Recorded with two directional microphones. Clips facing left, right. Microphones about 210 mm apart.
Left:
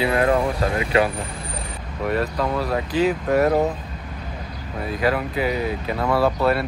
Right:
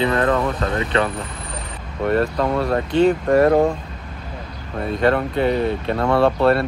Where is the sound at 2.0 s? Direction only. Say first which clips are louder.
Right 4 dB; centre (ahead or behind).